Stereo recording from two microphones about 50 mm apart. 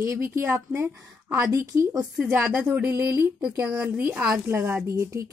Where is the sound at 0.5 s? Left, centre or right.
Right.